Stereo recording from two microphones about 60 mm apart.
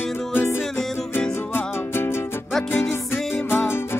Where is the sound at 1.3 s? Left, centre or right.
Left.